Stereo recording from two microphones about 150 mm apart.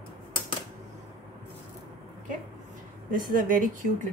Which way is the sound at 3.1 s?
65° right (ahead or behind).